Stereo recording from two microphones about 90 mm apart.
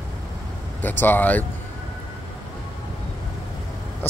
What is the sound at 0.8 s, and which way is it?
Speech, 20° left (ahead or behind).